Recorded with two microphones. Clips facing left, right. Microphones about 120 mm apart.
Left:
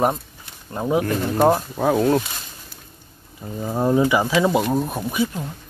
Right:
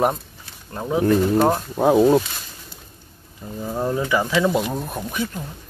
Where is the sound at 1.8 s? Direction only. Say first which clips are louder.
Right 3 dB; 10° right (ahead or behind).